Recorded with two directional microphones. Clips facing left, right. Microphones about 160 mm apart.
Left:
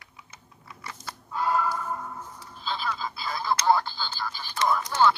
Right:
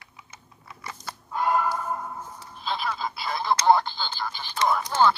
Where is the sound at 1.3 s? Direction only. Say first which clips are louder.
Right 2 dB; 20° right (ahead or behind).